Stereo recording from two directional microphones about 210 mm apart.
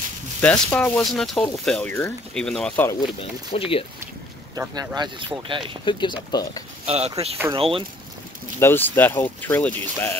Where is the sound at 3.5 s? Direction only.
25° left (ahead or behind).